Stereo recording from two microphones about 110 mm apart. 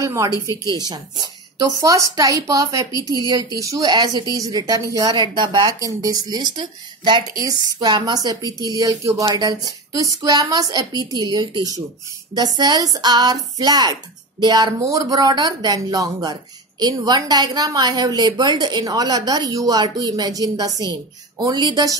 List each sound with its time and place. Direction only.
0.0 s a woman's voice: 30° right (ahead or behind)